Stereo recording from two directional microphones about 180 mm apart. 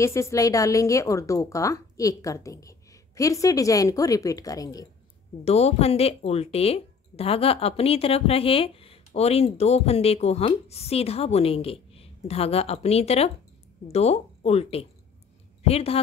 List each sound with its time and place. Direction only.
0.0 s a woman's voice: 15° left (ahead or behind)
5.4 s speech: 35° left (ahead or behind)